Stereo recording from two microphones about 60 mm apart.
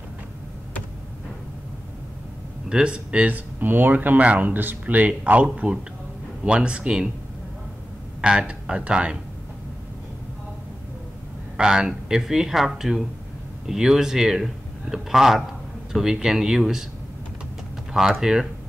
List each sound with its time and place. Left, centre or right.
2.7 s a man's voice: centre
8.2 s speech: centre
11.5 s a man's voice: centre
18.2 s a man's voice: centre